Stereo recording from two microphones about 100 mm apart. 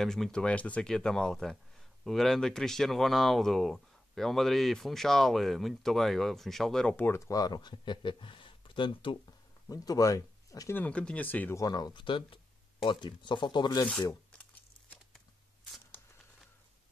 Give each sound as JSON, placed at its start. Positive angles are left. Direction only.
{"t": 0.0, "sound": "speech", "side_deg": 5}
{"t": 7.0, "sound": "speech", "side_deg": 30}
{"t": 9.7, "sound": "speech", "side_deg": 35}
{"t": 10.7, "sound": "speech", "side_deg": 15}
{"t": 11.5, "sound": "speech", "side_deg": 40}